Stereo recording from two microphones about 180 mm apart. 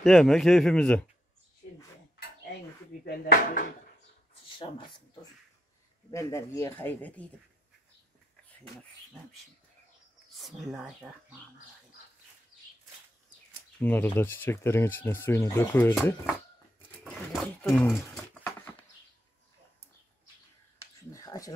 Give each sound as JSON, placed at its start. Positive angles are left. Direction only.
{"t": 0.0, "sound": "speech", "side_deg": 0}
{"t": 3.1, "sound": "speech", "side_deg": 50}
{"t": 4.3, "sound": "a sound", "side_deg": 25}
{"t": 6.1, "sound": "speech", "side_deg": 15}
{"t": 10.3, "sound": "speech", "side_deg": 0}
{"t": 13.7, "sound": "speech", "side_deg": 10}
{"t": 17.0, "sound": "speech", "side_deg": 0}
{"t": 20.8, "sound": "a sound", "side_deg": 20}